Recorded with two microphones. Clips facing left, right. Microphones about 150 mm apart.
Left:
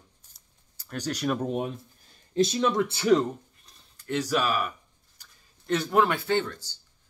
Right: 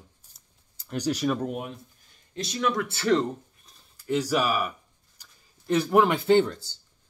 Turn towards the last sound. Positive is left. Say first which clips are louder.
# right 7 dB
turn(degrees=-20)  # may be behind; listen again after turning